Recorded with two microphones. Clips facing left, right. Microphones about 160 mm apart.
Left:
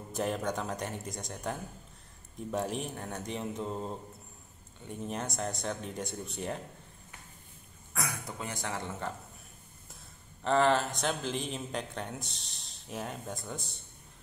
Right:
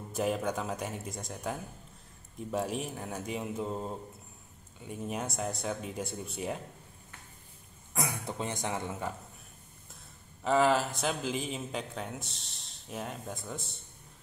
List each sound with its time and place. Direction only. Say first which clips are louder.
0.1 s speech: right 1 dB; 5° right (ahead or behind)
7.9 s speech: right 3 dB; 20° right (ahead or behind)
10.4 s speech: even; 5° right (ahead or behind)